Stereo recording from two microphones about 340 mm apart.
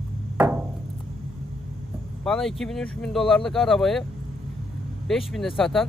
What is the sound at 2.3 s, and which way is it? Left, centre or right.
Speech, centre.